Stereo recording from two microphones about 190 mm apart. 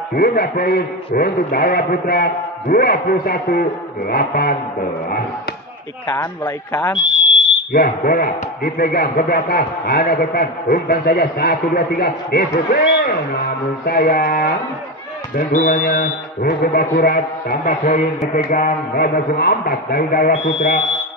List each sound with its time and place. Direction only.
0.1 s speech: 50° left (ahead or behind)
6.0 s speech: 20° left (ahead or behind)
7.7 s speech: 50° left (ahead or behind)